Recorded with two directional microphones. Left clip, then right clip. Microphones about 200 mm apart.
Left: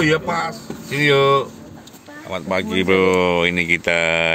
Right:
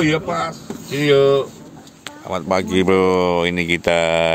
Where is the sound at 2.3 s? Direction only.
20° right (ahead or behind).